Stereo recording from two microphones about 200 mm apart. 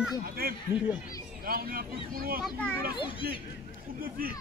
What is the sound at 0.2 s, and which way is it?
Speech, 50° right (ahead or behind).